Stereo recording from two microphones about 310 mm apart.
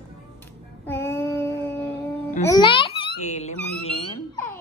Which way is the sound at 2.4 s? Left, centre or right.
Centre.